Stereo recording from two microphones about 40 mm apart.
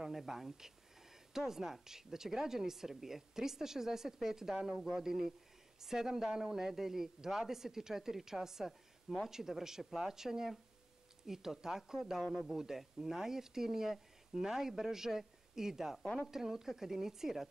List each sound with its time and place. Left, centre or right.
0.0 s speech: centre